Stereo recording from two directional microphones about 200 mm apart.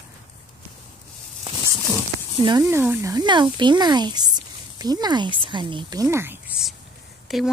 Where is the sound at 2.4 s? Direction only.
20° right (ahead or behind); by 7.4 s centre (ahead or behind).